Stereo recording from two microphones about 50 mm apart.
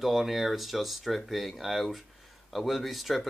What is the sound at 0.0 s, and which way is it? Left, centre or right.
Speech, centre.